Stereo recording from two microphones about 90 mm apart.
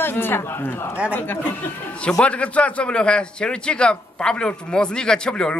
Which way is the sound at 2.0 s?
10° left (ahead or behind).